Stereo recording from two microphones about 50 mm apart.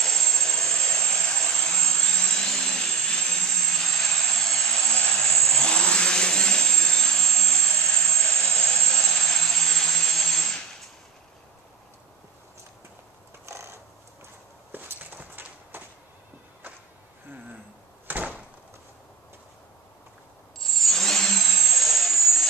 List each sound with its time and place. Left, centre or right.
0.0 s vehicle: centre
13.5 s mechanisms: right
14.7 s walk: right
18.0 s door: right
20.6 s vehicle: centre